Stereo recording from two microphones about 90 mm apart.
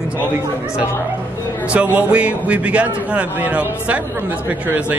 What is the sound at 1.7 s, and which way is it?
A man's voice, 15° right (ahead or behind).